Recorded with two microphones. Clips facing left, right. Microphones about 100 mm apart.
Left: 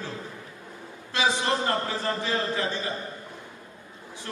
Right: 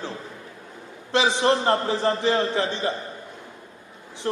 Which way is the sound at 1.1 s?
30° right (ahead or behind).